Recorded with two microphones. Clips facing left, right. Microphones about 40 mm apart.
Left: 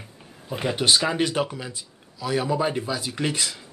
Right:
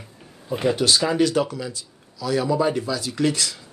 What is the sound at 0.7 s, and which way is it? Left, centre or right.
Speech, left.